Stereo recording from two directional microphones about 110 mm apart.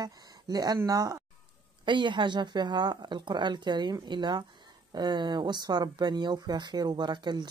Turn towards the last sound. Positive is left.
turn(degrees=-40)  # may be behind; listen again after turning